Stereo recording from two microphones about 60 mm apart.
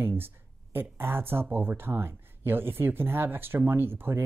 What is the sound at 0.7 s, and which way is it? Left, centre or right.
Speech, right.